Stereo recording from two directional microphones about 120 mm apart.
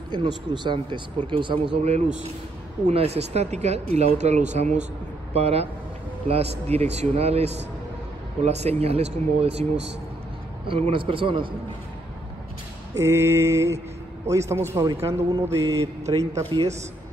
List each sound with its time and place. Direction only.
0.1 s speech: 40° right (ahead or behind)
1.8 s a man's voice: 65° right (ahead or behind)
5.3 s a man's voice: 60° right (ahead or behind)
10.7 s a man's voice: 45° right (ahead or behind)
12.9 s mantra: 25° right (ahead or behind)